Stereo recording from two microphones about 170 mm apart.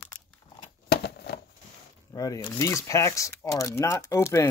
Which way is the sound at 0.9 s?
70° left (ahead or behind).